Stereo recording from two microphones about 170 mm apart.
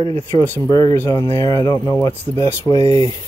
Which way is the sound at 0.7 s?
25° left (ahead or behind).